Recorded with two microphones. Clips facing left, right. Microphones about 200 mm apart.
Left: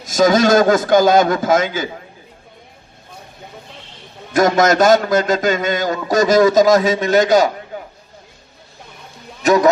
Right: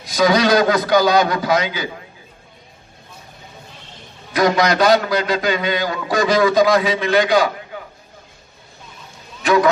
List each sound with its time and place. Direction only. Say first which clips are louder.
0.0 s a man's voice: left 3 dB; 45° left (ahead or behind)
4.3 s a man's voice: left 3 dB; 45° left (ahead or behind)
9.4 s a sound: left 2 dB; 40° left (ahead or behind)